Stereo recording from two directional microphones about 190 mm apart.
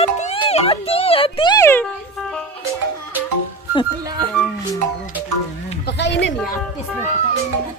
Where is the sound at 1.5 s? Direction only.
15° left (ahead or behind).